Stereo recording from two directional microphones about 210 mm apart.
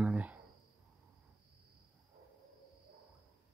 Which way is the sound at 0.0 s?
5° right (ahead or behind).